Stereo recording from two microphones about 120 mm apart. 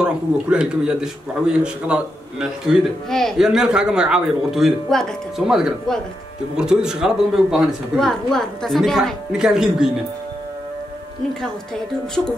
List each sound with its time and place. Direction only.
0.0 s a man's voice: 5° right (ahead or behind)